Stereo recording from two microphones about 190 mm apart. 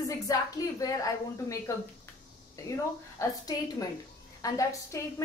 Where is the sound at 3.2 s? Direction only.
20° left (ahead or behind).